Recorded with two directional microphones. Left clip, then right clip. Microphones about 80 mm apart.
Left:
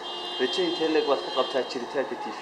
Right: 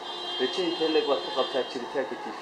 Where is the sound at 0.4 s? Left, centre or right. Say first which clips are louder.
Left 2 dB; left.